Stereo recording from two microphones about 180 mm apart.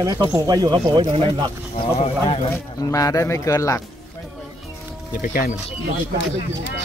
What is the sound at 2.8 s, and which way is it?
Speech, 20° left (ahead or behind).